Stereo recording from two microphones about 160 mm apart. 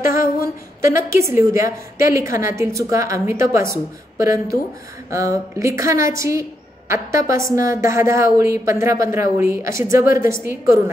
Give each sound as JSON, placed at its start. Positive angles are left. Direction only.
{"t": 0.1, "sound": "a woman's voice", "side_deg": -20}